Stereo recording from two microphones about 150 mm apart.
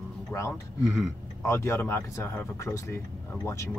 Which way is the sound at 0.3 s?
20° left (ahead or behind).